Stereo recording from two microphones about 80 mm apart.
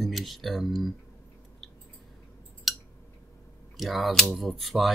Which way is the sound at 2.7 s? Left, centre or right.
Centre.